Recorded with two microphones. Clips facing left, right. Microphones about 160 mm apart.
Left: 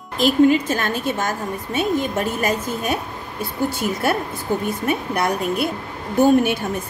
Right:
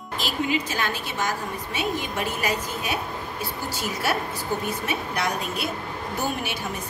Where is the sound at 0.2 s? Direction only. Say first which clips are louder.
Left 12 dB; 50° left (ahead or behind).